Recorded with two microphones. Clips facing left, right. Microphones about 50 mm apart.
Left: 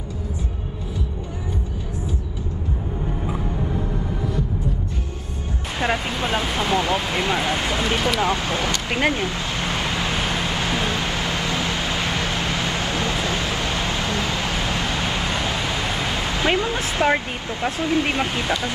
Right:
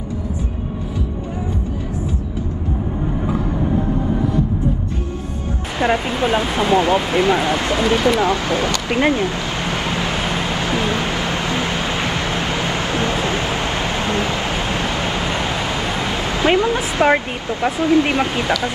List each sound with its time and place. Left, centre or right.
6.0 s speech: right
7.5 s speech: right
9.0 s vehicle: right
17.7 s speech: right